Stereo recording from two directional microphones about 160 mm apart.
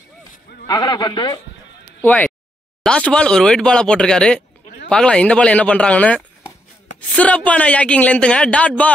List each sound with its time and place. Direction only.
0.7 s a man's voice: 25° left (ahead or behind)
2.0 s a man's voice: 10° left (ahead or behind)